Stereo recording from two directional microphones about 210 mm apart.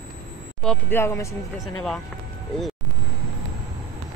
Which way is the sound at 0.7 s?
10° left (ahead or behind).